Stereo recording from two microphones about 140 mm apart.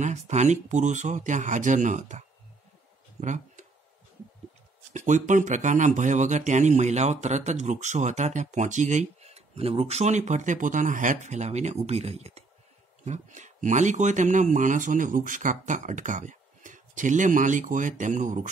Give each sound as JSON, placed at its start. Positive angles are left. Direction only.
{"t": 0.0, "sound": "speech", "side_deg": -55}
{"t": 3.2, "sound": "a sound", "side_deg": -60}
{"t": 4.9, "sound": "speech", "side_deg": -60}